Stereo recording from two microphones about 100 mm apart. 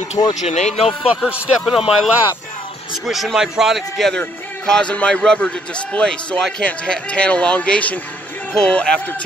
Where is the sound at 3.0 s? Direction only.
Centre (ahead or behind).